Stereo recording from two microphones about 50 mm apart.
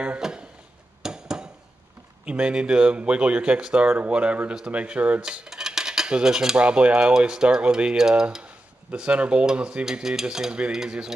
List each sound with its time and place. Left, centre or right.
0.2 s a sound: centre
2.2 s cutlery: centre
10.3 s speech: centre